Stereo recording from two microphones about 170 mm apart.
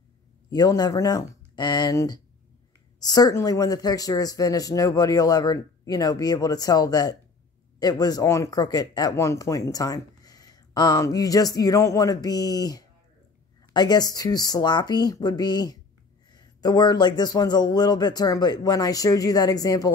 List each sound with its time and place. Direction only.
0.5 s speech: 20° left (ahead or behind)